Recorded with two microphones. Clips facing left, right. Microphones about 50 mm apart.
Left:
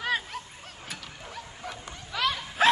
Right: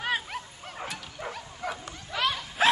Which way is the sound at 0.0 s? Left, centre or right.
Centre.